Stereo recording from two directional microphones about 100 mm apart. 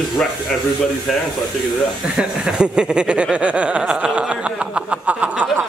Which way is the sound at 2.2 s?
10° right (ahead or behind).